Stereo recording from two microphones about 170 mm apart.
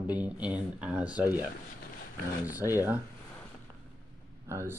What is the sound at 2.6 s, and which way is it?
Speech, 15° right (ahead or behind).